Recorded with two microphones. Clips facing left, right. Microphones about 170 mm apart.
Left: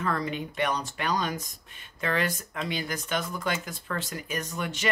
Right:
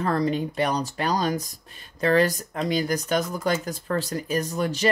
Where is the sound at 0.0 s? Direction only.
35° right (ahead or behind).